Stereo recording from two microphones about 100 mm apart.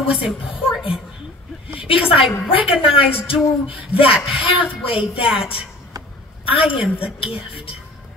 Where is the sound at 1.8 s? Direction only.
65° left (ahead or behind).